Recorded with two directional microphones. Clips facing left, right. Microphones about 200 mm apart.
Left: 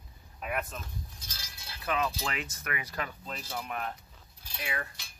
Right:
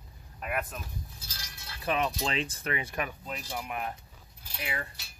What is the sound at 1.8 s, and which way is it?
Speech, 25° right (ahead or behind).